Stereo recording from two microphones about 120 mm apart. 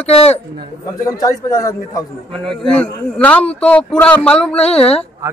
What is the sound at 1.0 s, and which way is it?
A man's voice, 25° left (ahead or behind).